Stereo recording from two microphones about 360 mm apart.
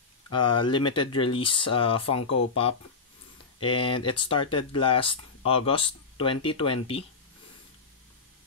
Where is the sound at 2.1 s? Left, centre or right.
Left.